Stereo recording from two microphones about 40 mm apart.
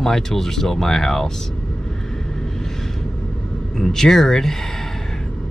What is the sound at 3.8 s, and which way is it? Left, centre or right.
Speech, centre.